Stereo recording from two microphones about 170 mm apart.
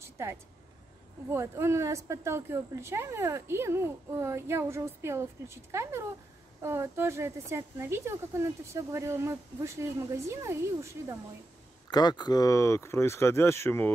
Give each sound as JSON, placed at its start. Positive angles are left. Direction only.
{"t": 0.0, "sound": "vehicle", "side_deg": -15}
{"t": 1.3, "sound": "speech", "side_deg": -15}
{"t": 11.9, "sound": "speech", "side_deg": 25}